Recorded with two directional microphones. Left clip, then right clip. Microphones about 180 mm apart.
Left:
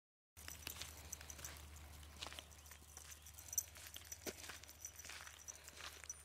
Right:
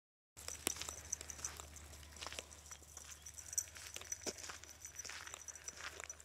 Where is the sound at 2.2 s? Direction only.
45° right (ahead or behind).